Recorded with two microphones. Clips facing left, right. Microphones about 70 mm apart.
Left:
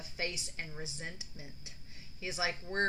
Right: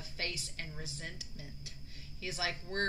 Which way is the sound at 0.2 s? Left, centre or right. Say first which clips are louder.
Left 2 dB; centre.